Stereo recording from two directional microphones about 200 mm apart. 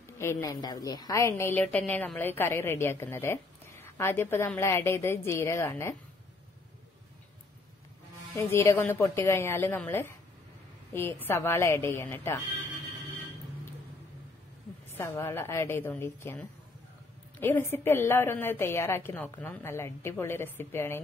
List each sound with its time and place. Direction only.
0.2 s a woman's voice: 15° left (ahead or behind)
8.4 s a woman's voice: 10° left (ahead or behind)
14.9 s a woman's voice: 10° left (ahead or behind)